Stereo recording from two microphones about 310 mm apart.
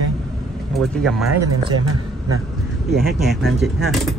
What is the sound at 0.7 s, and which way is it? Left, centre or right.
Speech, centre.